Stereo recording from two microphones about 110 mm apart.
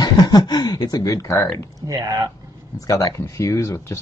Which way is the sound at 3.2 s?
25° left (ahead or behind).